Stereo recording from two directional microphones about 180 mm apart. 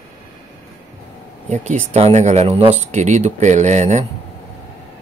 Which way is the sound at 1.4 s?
40° right (ahead or behind).